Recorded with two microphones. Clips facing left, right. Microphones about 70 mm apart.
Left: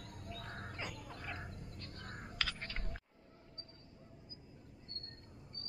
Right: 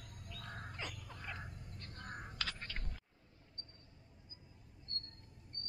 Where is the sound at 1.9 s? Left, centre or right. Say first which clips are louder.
Right 3 dB; centre.